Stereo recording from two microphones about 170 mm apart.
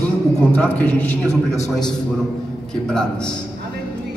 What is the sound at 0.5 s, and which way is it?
Speech, 10° left (ahead or behind).